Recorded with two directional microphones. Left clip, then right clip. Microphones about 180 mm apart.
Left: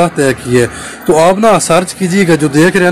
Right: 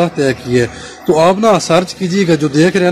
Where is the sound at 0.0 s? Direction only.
Centre (ahead or behind).